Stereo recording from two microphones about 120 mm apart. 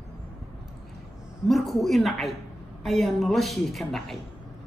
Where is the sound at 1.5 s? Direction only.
Centre (ahead or behind).